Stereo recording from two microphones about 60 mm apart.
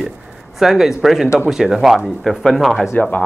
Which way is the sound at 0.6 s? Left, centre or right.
Centre.